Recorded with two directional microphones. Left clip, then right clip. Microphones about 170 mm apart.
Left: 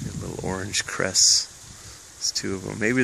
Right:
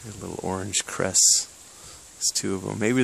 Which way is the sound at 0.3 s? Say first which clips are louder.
Even; 10° right (ahead or behind).